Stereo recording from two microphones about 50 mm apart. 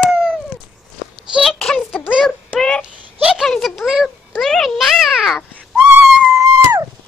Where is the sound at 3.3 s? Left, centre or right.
Centre.